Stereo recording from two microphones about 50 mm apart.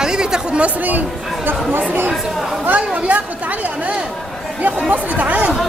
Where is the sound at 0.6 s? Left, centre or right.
Right.